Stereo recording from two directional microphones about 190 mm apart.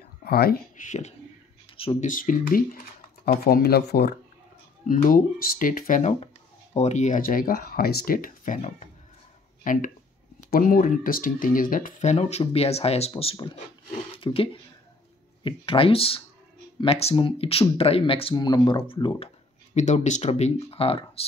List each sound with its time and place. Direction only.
0.2 s speech: 55° left (ahead or behind); by 2.0 s 30° left (ahead or behind)
2.0 s speech: 45° left (ahead or behind)
4.8 s speech: 45° left (ahead or behind)
9.6 s a sound: 45° left (ahead or behind)
10.5 s speech: 50° left (ahead or behind); by 21.3 s 30° left (ahead or behind)